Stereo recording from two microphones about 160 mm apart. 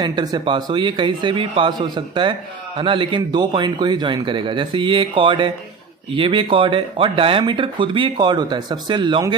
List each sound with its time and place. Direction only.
0.0 s speech: 25° right (ahead or behind)